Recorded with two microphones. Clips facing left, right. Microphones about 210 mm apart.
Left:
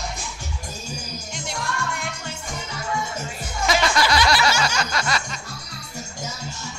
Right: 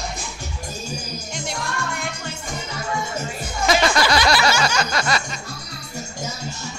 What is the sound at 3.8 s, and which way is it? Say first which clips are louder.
Music: right 2 dB; 45° right (ahead or behind).